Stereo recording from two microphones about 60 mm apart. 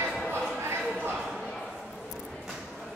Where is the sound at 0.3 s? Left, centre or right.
Right.